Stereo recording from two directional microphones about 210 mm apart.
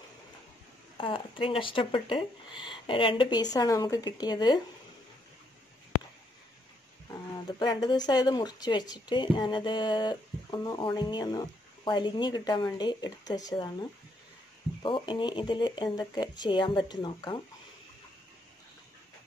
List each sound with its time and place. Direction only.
0.9 s speech: 25° left (ahead or behind)
7.5 s speech: 20° left (ahead or behind)